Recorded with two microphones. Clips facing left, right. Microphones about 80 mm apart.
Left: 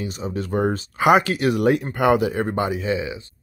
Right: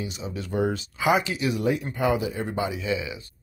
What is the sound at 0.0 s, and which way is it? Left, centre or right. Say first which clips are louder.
Speech: left 6 dB; left.